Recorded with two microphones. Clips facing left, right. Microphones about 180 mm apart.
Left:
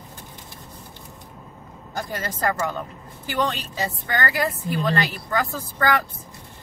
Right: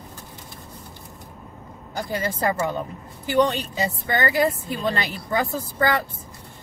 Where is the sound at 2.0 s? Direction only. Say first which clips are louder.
Right 3 dB; 15° right (ahead or behind).